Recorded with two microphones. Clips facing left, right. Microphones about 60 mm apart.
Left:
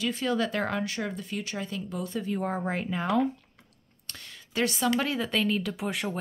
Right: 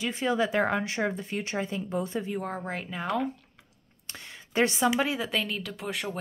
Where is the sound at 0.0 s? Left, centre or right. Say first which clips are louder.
Right 1 dB; right.